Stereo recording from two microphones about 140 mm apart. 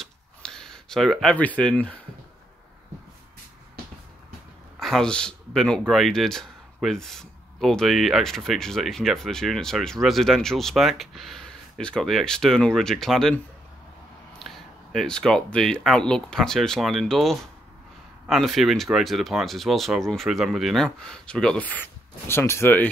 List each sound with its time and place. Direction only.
0.0 s a sound: 5° left (ahead or behind)
4.7 s speech: centre (ahead or behind)
14.4 s speech: centre (ahead or behind)